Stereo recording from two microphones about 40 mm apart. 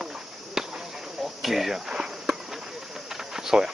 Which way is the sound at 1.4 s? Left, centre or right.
Centre.